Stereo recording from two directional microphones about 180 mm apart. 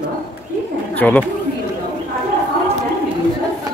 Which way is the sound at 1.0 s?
5° left (ahead or behind).